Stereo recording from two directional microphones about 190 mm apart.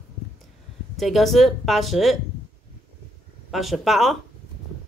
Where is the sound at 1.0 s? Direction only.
Centre (ahead or behind).